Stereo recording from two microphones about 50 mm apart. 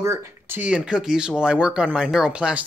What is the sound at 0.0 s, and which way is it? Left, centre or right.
Speech, right.